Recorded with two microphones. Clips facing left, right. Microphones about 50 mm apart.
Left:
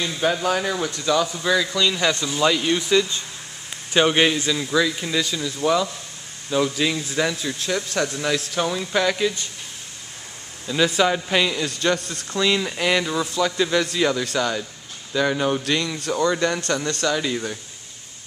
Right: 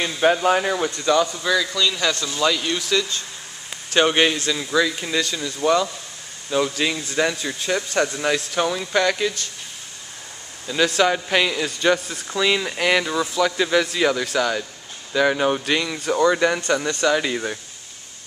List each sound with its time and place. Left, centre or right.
0.0 s speech: right
1.2 s a man's voice: centre
3.9 s a man's voice: centre
10.7 s a man's voice: centre